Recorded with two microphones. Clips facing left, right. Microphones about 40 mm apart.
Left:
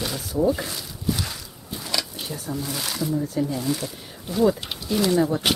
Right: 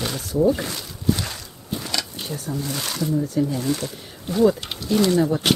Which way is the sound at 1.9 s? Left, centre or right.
Centre.